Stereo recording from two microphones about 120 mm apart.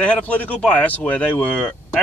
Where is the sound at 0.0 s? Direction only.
10° left (ahead or behind).